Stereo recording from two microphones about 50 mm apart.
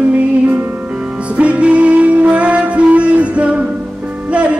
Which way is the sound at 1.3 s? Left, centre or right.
Right.